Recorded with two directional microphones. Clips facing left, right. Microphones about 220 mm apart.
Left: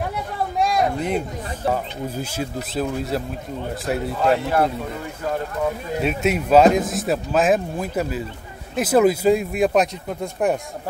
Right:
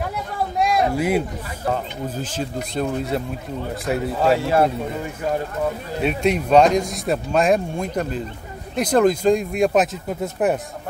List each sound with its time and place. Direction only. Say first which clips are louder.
0.6 s a sound: right 1 dB; 5° right (ahead or behind)
1.7 s speech: even; 10° left (ahead or behind)
4.4 s speech: right 2 dB; 25° right (ahead or behind)
6.0 s speech: right 2 dB; 5° left (ahead or behind)